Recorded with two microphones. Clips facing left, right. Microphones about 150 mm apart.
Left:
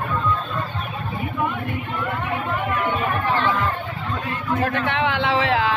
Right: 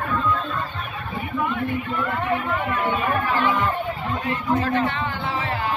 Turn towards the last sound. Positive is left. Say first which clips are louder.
# left 6 dB
turn(degrees=90)